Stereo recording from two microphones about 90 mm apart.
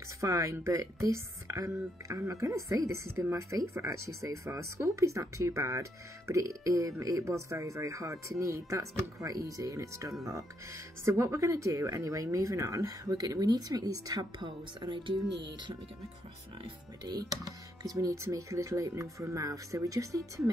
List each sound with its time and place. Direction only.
0.2 s speech: 35° right (ahead or behind); by 15.1 s 55° right (ahead or behind)
17.0 s speech: 45° right (ahead or behind)